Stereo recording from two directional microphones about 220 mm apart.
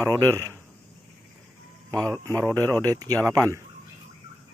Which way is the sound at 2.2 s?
15° right (ahead or behind).